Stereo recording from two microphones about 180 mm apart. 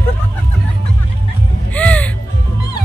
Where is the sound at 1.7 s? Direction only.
10° left (ahead or behind).